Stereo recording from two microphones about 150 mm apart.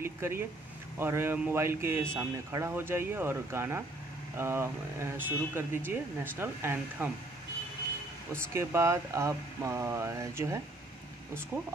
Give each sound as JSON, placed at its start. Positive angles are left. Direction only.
{"t": 0.0, "sound": "speech", "side_deg": -15}
{"t": 8.5, "sound": "speech", "side_deg": -20}